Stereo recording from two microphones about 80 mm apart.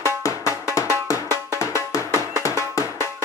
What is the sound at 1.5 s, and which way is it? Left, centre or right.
Music, left.